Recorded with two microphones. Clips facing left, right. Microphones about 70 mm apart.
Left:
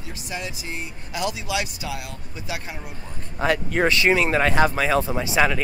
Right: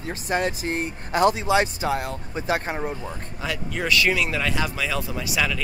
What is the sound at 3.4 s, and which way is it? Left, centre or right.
Speech, left.